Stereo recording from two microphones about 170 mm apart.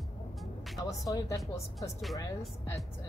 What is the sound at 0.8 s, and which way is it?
Speech, 20° left (ahead or behind).